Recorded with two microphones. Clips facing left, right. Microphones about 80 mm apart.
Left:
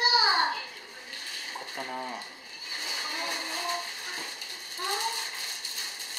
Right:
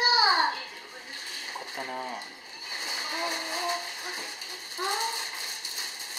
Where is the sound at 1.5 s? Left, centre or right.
Centre.